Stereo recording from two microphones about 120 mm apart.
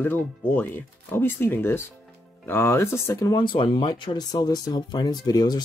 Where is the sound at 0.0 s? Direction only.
15° left (ahead or behind).